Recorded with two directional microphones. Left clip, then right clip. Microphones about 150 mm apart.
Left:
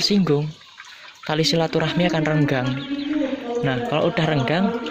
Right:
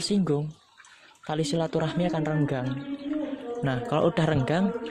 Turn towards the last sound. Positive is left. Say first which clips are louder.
# left 5 dB
turn(degrees=-35)  # may be behind; listen again after turning